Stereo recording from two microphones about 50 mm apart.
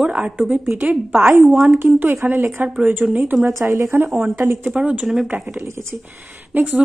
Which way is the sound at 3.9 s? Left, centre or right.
Right.